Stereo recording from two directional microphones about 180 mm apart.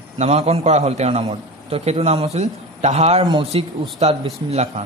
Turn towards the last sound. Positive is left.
turn(degrees=-40)  # may be behind; listen again after turning